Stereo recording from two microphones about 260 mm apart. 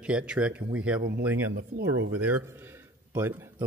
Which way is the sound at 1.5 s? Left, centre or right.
Right.